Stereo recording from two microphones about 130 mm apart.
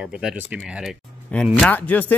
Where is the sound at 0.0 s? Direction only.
5° right (ahead or behind).